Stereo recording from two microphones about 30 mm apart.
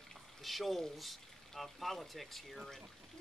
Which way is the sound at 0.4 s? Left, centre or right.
Centre.